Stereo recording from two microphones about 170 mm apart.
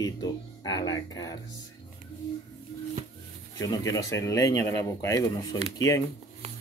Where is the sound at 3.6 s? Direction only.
20° left (ahead or behind).